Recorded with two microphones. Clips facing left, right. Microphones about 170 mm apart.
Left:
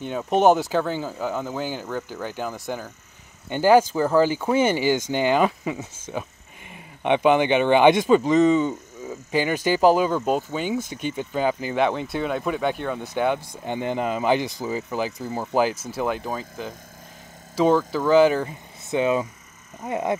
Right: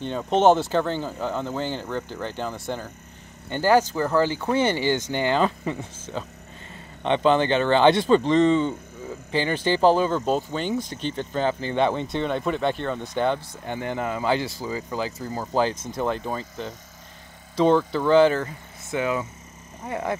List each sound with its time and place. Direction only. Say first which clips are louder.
0.0 s speech: even; 10° left (ahead or behind)